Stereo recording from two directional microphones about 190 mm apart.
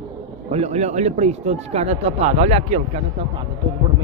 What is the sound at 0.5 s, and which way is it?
Speech, 35° right (ahead or behind).